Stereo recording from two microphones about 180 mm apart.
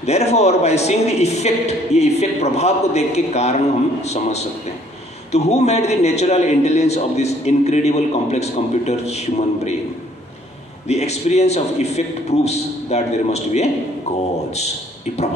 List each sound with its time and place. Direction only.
0.0 s a man's voice: 35° left (ahead or behind)
10.9 s a man's voice: 35° left (ahead or behind)